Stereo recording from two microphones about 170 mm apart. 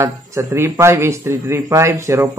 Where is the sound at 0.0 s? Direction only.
15° right (ahead or behind).